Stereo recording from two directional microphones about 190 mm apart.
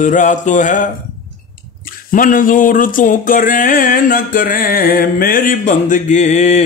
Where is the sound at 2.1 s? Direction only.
45° left (ahead or behind).